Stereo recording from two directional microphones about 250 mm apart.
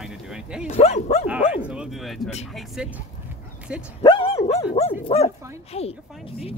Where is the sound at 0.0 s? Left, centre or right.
Centre.